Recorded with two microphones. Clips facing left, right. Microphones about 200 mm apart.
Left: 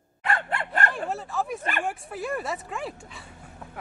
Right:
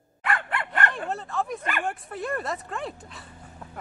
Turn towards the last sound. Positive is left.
turn(degrees=0)  # may be behind; listen again after turning